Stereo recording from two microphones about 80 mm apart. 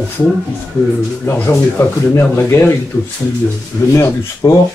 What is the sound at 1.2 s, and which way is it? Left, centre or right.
Speech, left.